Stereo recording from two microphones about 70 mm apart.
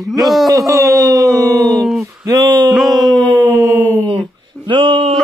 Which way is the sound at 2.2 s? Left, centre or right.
Right.